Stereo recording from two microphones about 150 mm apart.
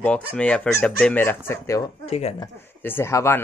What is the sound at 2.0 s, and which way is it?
Speech, 45° left (ahead or behind).